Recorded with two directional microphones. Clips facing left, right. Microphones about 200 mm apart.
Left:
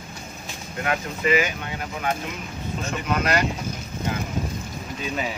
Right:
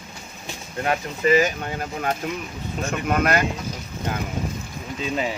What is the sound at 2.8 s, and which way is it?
Speech, 50° right (ahead or behind).